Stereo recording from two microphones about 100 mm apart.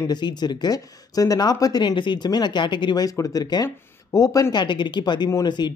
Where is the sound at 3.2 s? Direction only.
35° left (ahead or behind).